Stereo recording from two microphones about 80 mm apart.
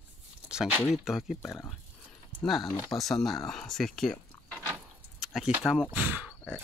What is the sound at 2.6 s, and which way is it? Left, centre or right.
Speech, left.